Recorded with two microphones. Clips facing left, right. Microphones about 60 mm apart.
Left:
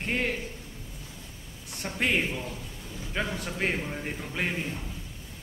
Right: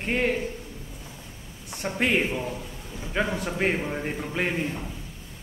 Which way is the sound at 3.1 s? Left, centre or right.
Centre.